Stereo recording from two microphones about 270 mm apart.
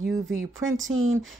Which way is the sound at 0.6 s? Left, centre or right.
Right.